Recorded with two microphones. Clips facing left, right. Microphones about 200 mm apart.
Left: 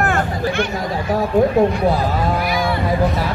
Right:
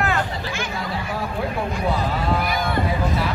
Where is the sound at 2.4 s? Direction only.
50° right (ahead or behind).